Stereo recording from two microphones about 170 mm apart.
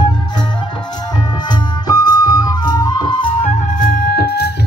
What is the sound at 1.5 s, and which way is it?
Music, 25° left (ahead or behind).